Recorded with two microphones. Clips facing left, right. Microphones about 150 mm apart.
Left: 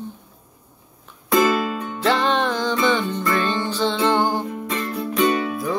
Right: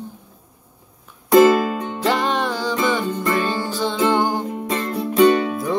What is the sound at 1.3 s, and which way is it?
Music, 45° right (ahead or behind).